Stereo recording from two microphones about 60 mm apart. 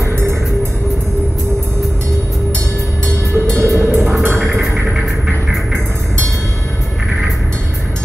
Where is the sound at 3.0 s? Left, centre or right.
Right.